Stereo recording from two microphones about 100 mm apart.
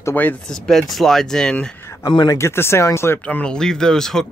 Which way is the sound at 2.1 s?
45° left (ahead or behind).